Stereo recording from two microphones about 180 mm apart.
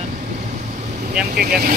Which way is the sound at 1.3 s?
60° right (ahead or behind).